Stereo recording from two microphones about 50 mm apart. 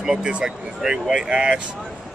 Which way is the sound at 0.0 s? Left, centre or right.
Centre.